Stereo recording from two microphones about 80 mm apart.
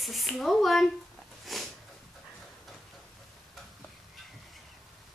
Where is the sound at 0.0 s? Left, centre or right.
Centre.